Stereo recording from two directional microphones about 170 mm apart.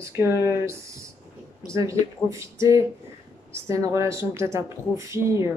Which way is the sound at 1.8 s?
20° right (ahead or behind).